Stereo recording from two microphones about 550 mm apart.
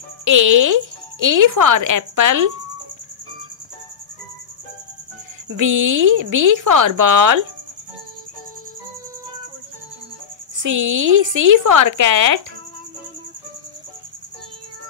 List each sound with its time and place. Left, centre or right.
0.2 s speech: right
5.6 s speech: right
10.6 s speech: right